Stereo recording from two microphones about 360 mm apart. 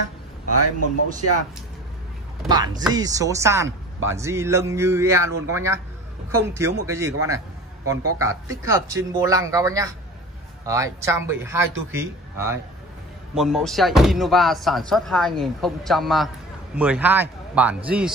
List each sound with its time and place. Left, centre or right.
0.0 s speech: right
0.8 s speech: right
2.4 s speech: centre
8.5 s speech: centre